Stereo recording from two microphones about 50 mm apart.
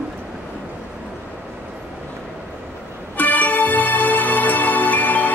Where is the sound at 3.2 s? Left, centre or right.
Left.